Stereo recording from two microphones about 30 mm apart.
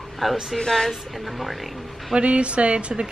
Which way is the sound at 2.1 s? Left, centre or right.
Right.